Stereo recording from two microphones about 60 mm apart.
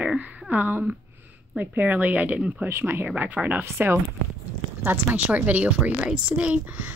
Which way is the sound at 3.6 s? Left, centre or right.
Right.